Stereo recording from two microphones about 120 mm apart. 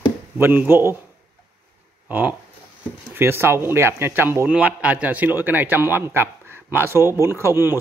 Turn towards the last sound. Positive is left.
turn(degrees=-20)  # may be behind; listen again after turning